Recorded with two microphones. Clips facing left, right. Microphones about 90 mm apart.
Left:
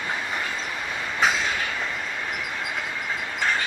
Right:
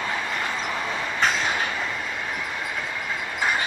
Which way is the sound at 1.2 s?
5° left (ahead or behind).